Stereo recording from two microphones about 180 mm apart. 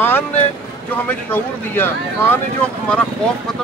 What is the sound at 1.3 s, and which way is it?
Speech, 10° left (ahead or behind).